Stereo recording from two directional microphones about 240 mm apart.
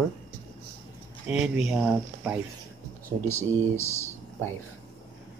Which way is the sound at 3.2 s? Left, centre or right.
Centre.